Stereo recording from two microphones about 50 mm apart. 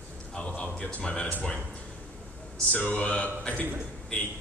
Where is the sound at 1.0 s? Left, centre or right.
Centre.